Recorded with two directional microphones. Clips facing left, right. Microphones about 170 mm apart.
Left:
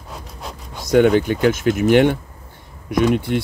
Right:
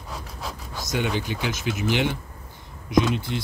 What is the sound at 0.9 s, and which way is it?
Speech, 55° left (ahead or behind).